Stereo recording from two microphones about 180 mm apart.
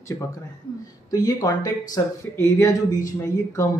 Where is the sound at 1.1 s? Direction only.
20° left (ahead or behind).